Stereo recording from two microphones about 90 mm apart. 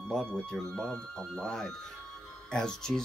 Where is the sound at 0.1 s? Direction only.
5° left (ahead or behind).